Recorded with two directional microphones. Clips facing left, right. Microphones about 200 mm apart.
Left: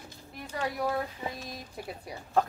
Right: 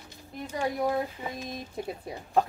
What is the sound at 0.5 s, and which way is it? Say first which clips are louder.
Speech: right 3 dB; 20° right (ahead or behind).